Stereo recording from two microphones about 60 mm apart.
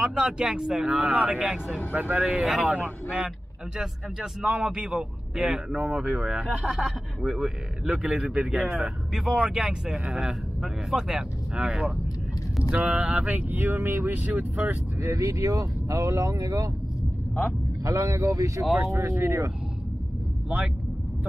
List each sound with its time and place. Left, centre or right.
0.0 s speech: centre
2.4 s speech: centre
3.7 s speech: centre
6.8 s speech: centre; by 14.8 s right
15.0 s speech: right
17.8 s speech: right
18.8 s speech: right
20.4 s speech: centre